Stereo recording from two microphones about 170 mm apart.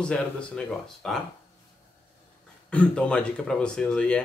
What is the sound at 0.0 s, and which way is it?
A man's voice, 5° left (ahead or behind).